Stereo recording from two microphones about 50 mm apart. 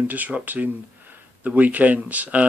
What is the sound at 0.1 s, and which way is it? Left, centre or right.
Speech, right.